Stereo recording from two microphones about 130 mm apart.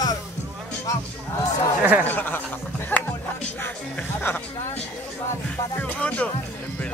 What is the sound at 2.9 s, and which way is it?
Music, 15° left (ahead or behind).